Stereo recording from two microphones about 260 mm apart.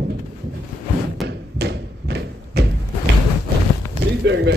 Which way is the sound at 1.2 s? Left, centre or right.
Right.